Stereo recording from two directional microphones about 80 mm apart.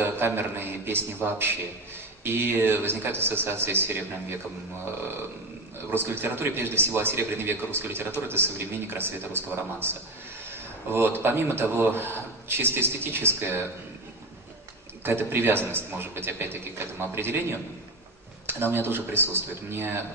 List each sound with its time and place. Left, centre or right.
0.0 s a man's voice: right
5.9 s a man's voice: right
15.0 s a man's voice: right